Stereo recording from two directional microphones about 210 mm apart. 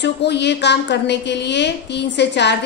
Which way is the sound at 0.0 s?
55° left (ahead or behind).